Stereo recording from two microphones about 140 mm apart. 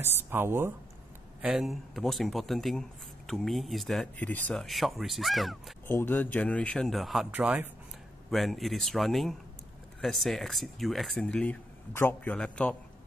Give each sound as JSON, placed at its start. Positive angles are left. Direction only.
{"t": 0.3, "sound": "speech", "side_deg": -15}
{"t": 1.4, "sound": "speech", "side_deg": 0}
{"t": 5.9, "sound": "speech", "side_deg": 15}
{"t": 8.3, "sound": "speech", "side_deg": 0}